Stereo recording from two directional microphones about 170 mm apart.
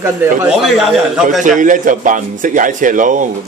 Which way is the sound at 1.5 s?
50° right (ahead or behind).